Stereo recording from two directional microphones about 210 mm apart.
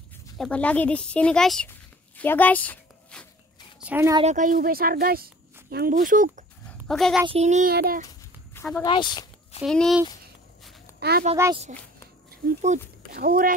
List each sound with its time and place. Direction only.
0.4 s speech: 5° left (ahead or behind)
3.8 s speech: 10° right (ahead or behind)
4.2 s speech: 35° right (ahead or behind)
6.9 s speech: centre (ahead or behind)
7.2 s child singing: 30° right (ahead or behind)
7.7 s speech: 45° right (ahead or behind)
8.8 s speech: 20° left (ahead or behind)
9.6 s speech: centre (ahead or behind)
11.0 s speech: 50° right (ahead or behind)
12.3 s speech: 40° right (ahead or behind)